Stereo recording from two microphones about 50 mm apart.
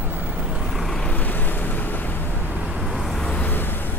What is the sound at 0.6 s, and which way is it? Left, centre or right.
Vehicle, centre.